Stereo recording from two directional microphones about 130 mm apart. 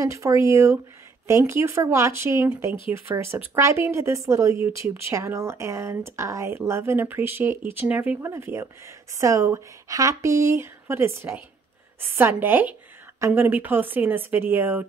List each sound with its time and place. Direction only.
0.0 s speech: 25° right (ahead or behind)